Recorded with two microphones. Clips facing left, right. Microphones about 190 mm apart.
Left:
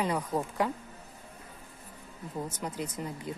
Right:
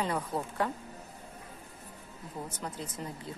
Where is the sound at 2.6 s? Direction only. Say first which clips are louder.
Left 4 dB; 15° left (ahead or behind).